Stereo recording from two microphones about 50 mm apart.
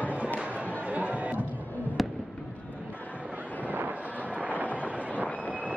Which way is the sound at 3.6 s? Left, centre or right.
Right.